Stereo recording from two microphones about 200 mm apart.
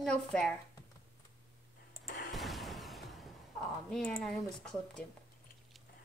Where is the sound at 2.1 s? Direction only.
45° left (ahead or behind).